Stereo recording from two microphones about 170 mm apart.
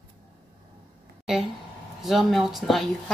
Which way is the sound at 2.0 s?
Centre (ahead or behind).